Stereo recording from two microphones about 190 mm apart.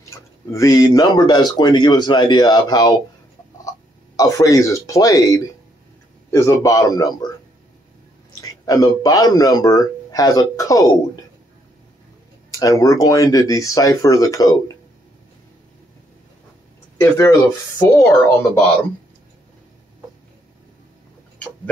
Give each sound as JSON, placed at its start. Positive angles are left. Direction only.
{"t": 0.5, "sound": "speech", "side_deg": 15}
{"t": 4.2, "sound": "speech", "side_deg": 15}
{"t": 8.4, "sound": "speech", "side_deg": 20}
{"t": 12.4, "sound": "speech", "side_deg": 20}
{"t": 17.0, "sound": "speech", "side_deg": 15}